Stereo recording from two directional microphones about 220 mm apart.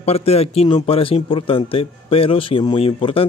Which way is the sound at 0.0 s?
25° left (ahead or behind).